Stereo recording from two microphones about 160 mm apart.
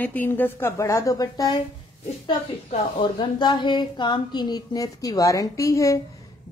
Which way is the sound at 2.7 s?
30° left (ahead or behind).